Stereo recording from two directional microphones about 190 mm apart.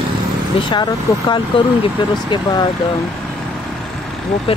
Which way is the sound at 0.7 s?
25° left (ahead or behind).